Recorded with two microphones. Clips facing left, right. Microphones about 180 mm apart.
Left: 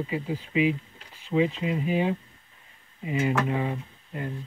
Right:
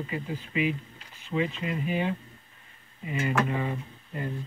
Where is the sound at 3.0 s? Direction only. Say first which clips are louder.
Left 2 dB; 20° left (ahead or behind).